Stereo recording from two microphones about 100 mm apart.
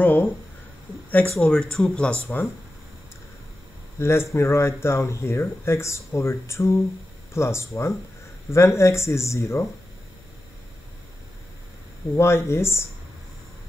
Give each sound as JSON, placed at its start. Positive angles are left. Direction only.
{"t": 0.0, "sound": "a sound", "side_deg": 15}
{"t": 1.3, "sound": "speech", "side_deg": 10}
{"t": 4.0, "sound": "speech", "side_deg": 25}
{"t": 12.2, "sound": "speech", "side_deg": 25}